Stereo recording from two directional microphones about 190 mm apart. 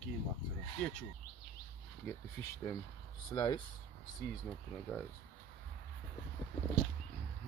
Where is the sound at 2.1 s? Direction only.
10° left (ahead or behind).